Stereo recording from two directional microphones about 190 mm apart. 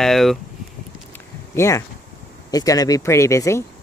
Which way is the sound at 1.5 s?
15° left (ahead or behind).